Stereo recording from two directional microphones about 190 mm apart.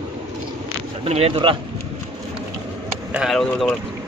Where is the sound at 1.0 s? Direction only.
30° right (ahead or behind).